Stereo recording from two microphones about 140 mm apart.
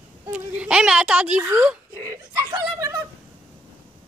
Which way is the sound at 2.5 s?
25° right (ahead or behind).